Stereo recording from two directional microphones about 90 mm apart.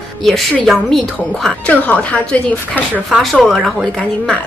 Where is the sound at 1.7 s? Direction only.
15° left (ahead or behind).